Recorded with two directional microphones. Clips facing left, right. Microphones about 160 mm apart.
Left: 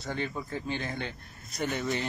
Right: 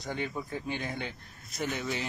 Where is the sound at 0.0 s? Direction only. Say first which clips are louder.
Left 1 dB; 15° right (ahead or behind).